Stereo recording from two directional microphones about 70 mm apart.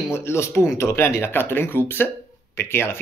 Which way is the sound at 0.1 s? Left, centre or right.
Left.